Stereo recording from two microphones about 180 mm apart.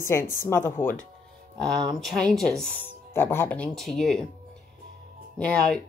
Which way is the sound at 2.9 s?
15° left (ahead or behind).